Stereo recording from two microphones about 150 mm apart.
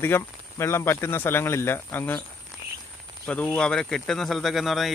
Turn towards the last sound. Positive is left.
turn(degrees=0)  # may be behind; listen again after turning